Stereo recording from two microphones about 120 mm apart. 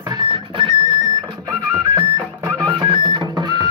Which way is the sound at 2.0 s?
30° right (ahead or behind).